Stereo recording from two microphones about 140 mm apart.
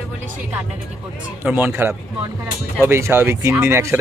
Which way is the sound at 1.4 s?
15° right (ahead or behind).